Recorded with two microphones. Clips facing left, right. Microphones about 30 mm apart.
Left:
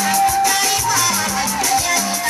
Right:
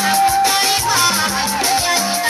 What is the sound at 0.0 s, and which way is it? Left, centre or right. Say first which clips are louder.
Music: right 2 dB; right.